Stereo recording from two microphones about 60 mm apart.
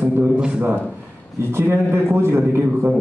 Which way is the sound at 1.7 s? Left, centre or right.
Right.